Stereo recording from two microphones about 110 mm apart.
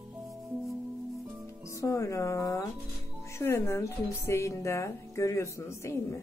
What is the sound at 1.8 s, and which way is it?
Speech, 30° left (ahead or behind).